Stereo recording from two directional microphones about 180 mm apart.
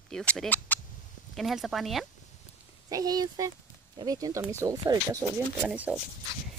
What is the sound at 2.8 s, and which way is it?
Speech, 20° right (ahead or behind).